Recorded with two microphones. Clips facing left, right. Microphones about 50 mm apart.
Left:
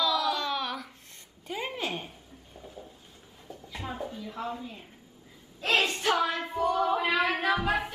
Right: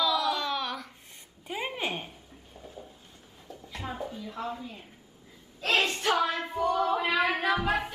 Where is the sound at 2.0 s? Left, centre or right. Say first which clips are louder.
Even; centre.